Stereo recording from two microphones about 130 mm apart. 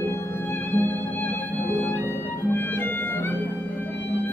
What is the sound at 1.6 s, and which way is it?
Music, 15° left (ahead or behind).